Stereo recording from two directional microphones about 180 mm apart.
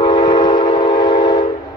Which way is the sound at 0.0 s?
25° left (ahead or behind).